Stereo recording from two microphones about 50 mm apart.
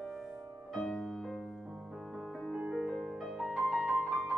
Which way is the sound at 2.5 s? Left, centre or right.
Centre.